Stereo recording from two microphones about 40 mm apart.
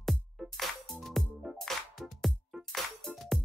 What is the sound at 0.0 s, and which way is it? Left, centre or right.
Music, centre.